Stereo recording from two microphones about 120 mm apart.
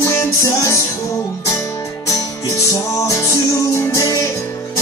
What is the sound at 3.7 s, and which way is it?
Music, 25° left (ahead or behind).